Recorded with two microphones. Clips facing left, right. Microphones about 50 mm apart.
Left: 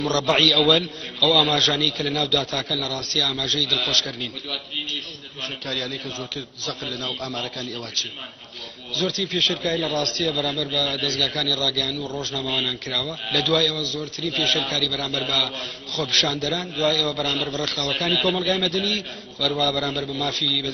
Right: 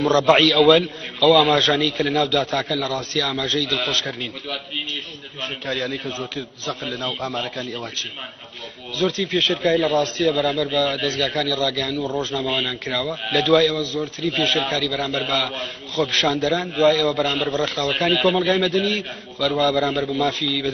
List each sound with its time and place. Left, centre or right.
0.0 s a man's voice: right
5.7 s a man's voice: right
18.2 s speech: centre
18.5 s a man's voice: right